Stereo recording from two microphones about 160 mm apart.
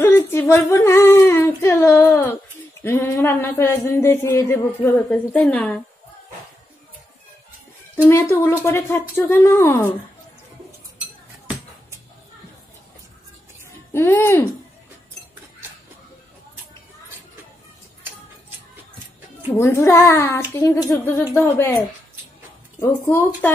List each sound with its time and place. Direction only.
0.0 s humming: 15° left (ahead or behind)
2.8 s speech: 15° left (ahead or behind)
8.1 s speech: 15° left (ahead or behind)
13.9 s speech: 15° left (ahead or behind)
19.5 s speech: 15° left (ahead or behind)
22.8 s speech: 15° left (ahead or behind)